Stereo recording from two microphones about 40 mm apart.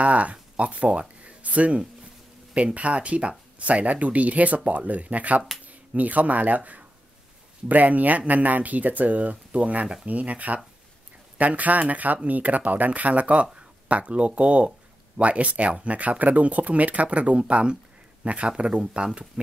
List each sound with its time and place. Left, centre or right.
0.0 s speech: right